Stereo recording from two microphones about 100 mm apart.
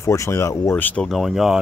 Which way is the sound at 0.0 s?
30° left (ahead or behind).